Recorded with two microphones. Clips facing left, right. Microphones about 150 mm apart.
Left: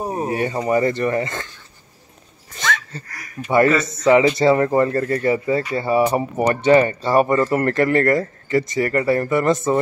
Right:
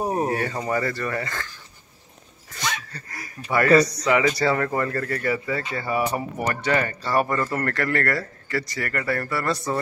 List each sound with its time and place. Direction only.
0.0 s a sound: 15° right (ahead or behind)
0.3 s speech: 15° left (ahead or behind)
2.9 s speech: 25° left (ahead or behind)